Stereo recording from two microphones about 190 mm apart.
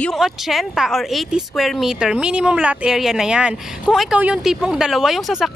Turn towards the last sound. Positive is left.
turn(degrees=0)  # may be behind; listen again after turning